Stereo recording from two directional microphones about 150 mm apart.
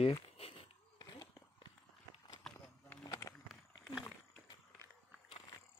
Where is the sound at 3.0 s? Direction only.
20° left (ahead or behind).